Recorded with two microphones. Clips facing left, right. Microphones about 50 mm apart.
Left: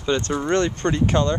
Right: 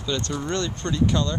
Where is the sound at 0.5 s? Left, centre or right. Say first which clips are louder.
Left 8 dB; left.